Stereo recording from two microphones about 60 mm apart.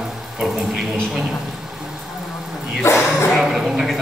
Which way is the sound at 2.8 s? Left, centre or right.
Left.